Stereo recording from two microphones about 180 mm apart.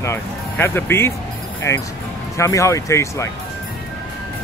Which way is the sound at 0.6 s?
15° left (ahead or behind).